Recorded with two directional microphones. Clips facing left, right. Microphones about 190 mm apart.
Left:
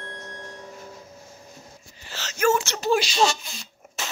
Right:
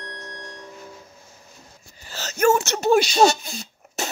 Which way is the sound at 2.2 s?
40° right (ahead or behind).